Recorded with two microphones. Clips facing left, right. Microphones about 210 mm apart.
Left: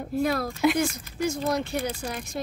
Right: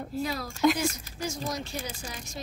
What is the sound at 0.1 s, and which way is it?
Speech, 55° left (ahead or behind).